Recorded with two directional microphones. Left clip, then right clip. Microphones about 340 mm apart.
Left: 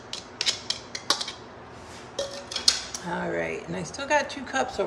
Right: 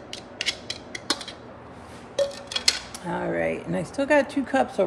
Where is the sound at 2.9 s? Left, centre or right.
Right.